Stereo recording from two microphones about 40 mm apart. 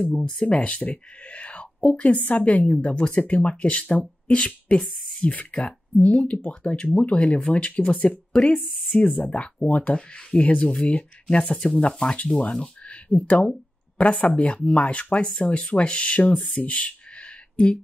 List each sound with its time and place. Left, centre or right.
0.0 s speech: centre
0.4 s speech: left
8.6 s speech: centre
8.9 s speech: left
9.9 s speech: left
12.8 s speech: left
14.7 s speech: left
16.6 s a sound: left